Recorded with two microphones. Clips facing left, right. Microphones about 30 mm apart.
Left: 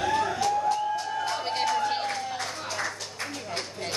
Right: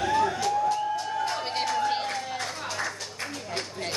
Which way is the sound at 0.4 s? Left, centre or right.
Centre.